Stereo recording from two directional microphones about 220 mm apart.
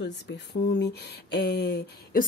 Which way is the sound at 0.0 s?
50° left (ahead or behind).